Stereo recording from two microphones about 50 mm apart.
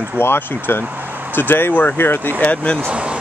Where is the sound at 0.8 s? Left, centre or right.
Right.